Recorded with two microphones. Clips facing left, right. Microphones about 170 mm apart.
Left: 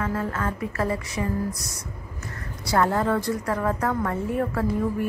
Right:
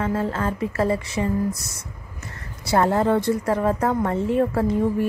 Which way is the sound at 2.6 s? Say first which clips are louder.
Right 3 dB; 25° right (ahead or behind).